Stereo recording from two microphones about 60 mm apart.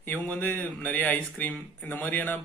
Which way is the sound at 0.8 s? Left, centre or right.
Left.